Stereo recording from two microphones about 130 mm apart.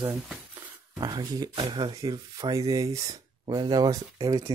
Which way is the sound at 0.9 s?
30° right (ahead or behind).